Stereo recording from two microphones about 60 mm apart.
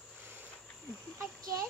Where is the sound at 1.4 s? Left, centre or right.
Right.